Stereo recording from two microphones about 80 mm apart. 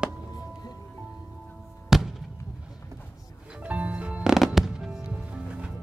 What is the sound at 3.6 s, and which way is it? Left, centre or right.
Music, centre.